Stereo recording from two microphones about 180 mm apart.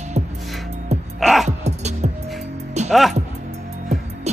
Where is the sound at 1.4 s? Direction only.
40° right (ahead or behind).